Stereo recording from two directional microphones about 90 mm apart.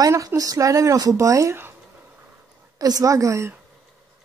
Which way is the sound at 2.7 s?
45° right (ahead or behind).